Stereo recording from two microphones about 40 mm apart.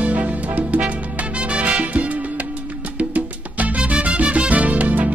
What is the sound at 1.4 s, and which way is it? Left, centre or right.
Music, right.